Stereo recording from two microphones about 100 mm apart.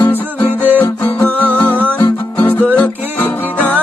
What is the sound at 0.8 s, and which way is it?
Music, 15° left (ahead or behind).